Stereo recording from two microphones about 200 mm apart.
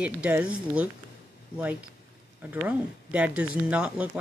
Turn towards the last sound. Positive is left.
turn(degrees=-5)  # may be behind; listen again after turning